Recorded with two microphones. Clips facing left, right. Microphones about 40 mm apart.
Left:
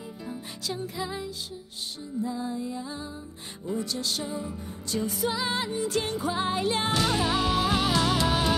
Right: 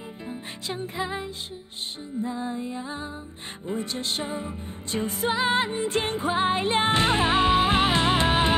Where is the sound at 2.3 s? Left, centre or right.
Right.